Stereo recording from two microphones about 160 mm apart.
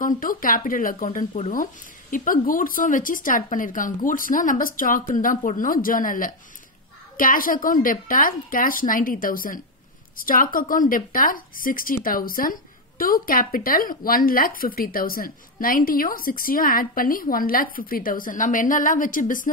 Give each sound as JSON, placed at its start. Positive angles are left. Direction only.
{"t": 0.0, "sound": "a woman's voice", "side_deg": 60}